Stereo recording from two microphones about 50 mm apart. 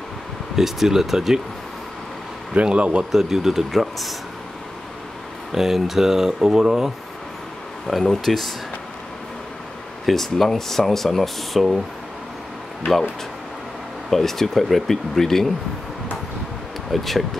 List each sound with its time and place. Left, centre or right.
0.6 s speech: centre
2.5 s speech: right
3.1 s speech: centre
5.5 s speech: centre
7.8 s speech: centre
10.0 s speech: centre
14.1 s speech: centre
16.9 s speech: centre